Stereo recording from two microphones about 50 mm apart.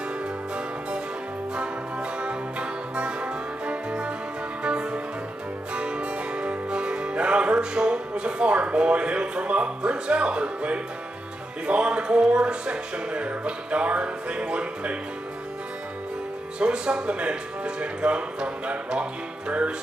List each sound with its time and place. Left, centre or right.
1.5 s music: centre
16.5 s music: right